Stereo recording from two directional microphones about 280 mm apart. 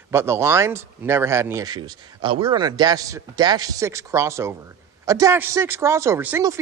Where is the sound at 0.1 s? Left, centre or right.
Centre.